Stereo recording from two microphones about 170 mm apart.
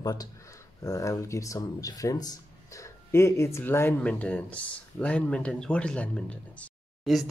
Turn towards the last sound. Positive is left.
turn(degrees=0)  # may be behind; listen again after turning